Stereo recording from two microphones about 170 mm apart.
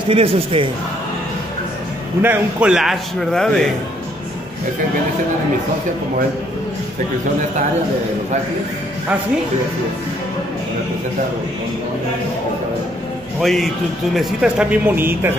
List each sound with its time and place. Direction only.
0.1 s a man's voice: 35° right (ahead or behind)
2.2 s a man's voice: 10° right (ahead or behind)
13.4 s a man's voice: centre (ahead or behind)